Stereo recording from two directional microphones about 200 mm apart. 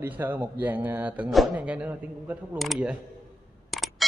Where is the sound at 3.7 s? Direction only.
Centre (ahead or behind).